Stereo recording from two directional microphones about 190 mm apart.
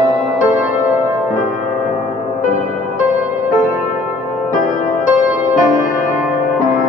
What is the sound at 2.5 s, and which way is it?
Music, 45° left (ahead or behind).